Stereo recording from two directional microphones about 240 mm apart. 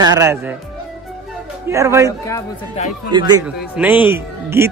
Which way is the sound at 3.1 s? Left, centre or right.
Centre.